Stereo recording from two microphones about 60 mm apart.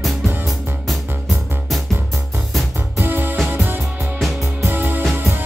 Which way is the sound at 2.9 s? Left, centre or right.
Right.